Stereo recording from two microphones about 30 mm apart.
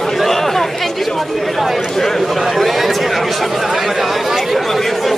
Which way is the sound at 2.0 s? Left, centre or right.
Centre.